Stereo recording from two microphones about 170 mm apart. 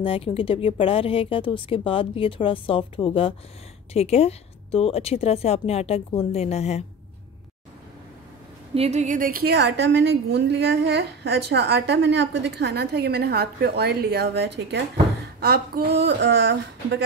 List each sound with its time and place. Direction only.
0.0 s a woman's voice: 35° left (ahead or behind)
8.7 s a woman's voice: 40° right (ahead or behind); by 14.9 s 85° right
15.4 s a woman's voice: 65° right (ahead or behind); by 17.0 s 90° right